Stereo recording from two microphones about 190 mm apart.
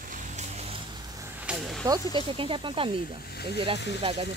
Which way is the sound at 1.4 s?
5° right (ahead or behind).